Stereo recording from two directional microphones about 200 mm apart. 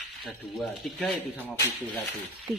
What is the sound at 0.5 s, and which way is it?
A woman's voice, centre (ahead or behind).